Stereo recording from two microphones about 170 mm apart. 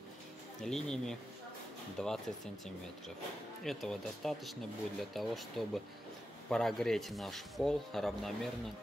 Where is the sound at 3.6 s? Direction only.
Centre (ahead or behind).